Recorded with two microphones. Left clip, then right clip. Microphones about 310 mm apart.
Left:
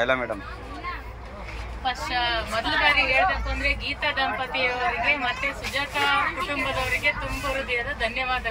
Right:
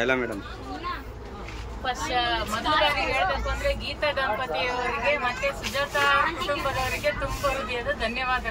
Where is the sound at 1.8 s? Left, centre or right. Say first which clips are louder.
Even; centre.